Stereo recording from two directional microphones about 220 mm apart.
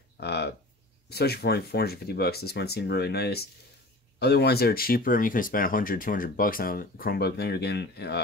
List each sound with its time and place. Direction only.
0.2 s speech: 50° left (ahead or behind)